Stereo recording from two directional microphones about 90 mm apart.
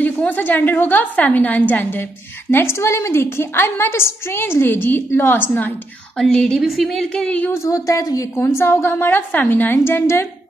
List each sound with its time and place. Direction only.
0.0 s a woman's voice: 20° left (ahead or behind)
6.1 s a woman's voice: 5° left (ahead or behind)
7.5 s a woman's voice: 35° left (ahead or behind)
8.4 s a woman's voice: 30° left (ahead or behind)